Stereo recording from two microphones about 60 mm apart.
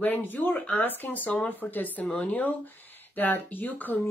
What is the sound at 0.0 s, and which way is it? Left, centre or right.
A woman's voice, left.